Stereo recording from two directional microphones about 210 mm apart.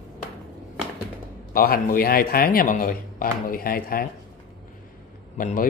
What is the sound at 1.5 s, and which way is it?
A man's voice, 45° left (ahead or behind).